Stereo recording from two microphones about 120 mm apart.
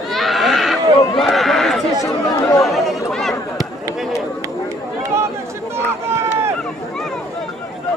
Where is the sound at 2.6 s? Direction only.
Centre (ahead or behind).